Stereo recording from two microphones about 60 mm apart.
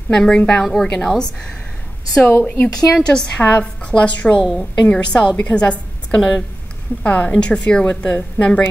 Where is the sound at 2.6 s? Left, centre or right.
Centre.